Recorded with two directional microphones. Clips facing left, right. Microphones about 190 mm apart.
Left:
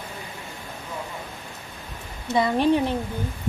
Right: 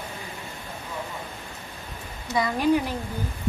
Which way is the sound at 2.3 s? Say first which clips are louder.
Left 2 dB; 25° left (ahead or behind).